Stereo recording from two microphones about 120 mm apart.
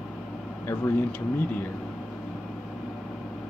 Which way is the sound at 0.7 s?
15° left (ahead or behind).